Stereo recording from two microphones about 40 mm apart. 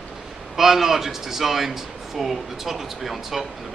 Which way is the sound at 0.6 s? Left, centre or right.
Centre.